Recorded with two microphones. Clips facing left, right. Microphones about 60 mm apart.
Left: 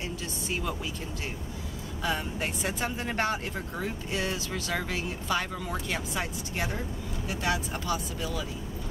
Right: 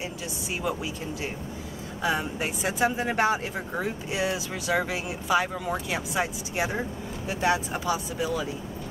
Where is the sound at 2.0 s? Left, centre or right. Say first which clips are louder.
Right 4 dB; centre.